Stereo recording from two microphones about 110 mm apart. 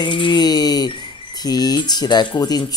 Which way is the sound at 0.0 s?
45° left (ahead or behind).